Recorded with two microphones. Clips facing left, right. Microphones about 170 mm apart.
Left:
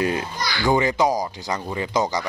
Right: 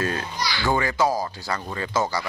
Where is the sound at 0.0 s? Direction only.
15° left (ahead or behind).